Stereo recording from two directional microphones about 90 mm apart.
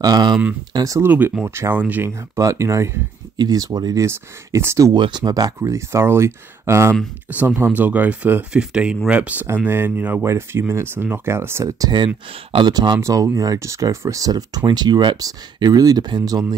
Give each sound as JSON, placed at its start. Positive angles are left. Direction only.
{"t": 0.0, "sound": "speech", "side_deg": -50}
{"t": 0.7, "sound": "speech", "side_deg": -40}
{"t": 1.0, "sound": "speech", "side_deg": -20}
{"t": 3.3, "sound": "speech", "side_deg": -45}
{"t": 4.0, "sound": "speech", "side_deg": -30}
{"t": 4.9, "sound": "speech", "side_deg": -60}
{"t": 11.8, "sound": "speech", "side_deg": -55}
{"t": 13.0, "sound": "speech", "side_deg": -35}